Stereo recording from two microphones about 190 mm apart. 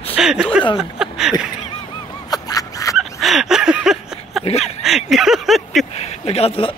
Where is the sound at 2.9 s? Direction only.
Centre (ahead or behind).